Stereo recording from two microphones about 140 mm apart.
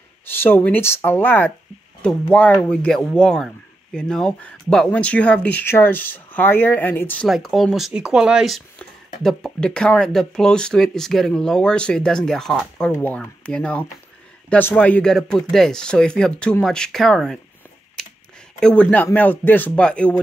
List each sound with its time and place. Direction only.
0.3 s speech: 15° left (ahead or behind)
7.2 s speech: centre (ahead or behind)
18.0 s a sound: 5° left (ahead or behind)
18.6 s speech: 10° left (ahead or behind)